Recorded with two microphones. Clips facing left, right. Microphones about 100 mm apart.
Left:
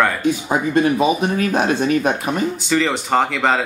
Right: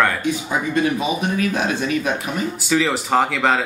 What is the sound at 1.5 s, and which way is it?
Speech, 50° left (ahead or behind).